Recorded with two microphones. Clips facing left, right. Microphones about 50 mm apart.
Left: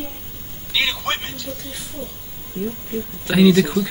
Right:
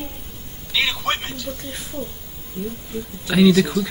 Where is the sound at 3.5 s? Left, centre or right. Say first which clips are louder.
Left 1 dB; left.